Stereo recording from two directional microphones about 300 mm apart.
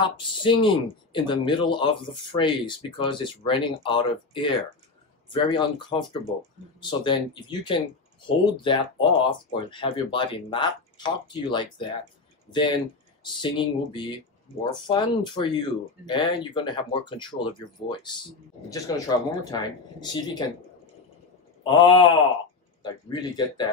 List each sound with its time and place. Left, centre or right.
0.0 s speech: centre
21.6 s speech: centre